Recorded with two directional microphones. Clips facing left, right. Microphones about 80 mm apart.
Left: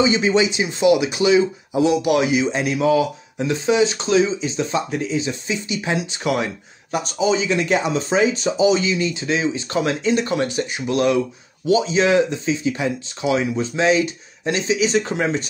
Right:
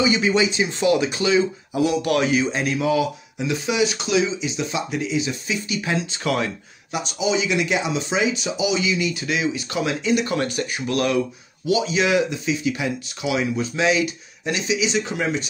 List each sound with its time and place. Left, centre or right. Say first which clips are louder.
0.0 s speech: left 2 dB; left
6.9 s speech: left 3 dB; left
10.3 s speech: left 2 dB; left